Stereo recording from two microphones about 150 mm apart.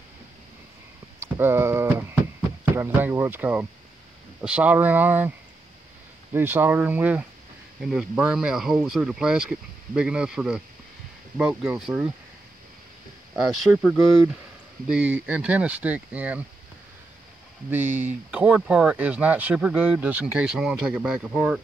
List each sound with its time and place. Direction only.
1.2 s a sound: 15° right (ahead or behind)
2.6 s speech: 15° right (ahead or behind)
6.3 s speech: 15° right (ahead or behind)
13.7 s speech: 5° left (ahead or behind)
15.0 s speech: 10° right (ahead or behind)
17.6 s speech: 10° right (ahead or behind)